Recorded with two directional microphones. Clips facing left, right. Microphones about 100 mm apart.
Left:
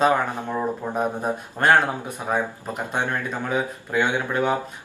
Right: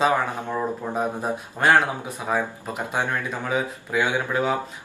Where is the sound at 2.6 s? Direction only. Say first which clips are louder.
Even; 5° right (ahead or behind).